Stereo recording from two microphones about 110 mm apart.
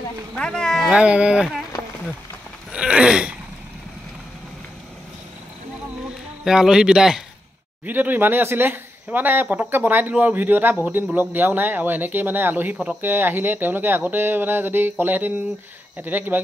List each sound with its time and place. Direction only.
0.4 s speech: 5° left (ahead or behind)
0.9 s speech: 10° right (ahead or behind)
2.7 s a sound: 10° right (ahead or behind)
6.4 s speech: 5° right (ahead or behind)
7.8 s speech: 15° right (ahead or behind)